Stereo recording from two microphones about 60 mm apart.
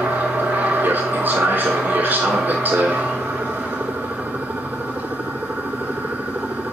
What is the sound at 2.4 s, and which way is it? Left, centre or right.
Speech, right.